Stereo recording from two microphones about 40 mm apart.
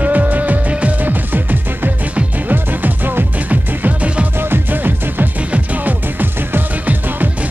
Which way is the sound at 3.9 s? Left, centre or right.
Right.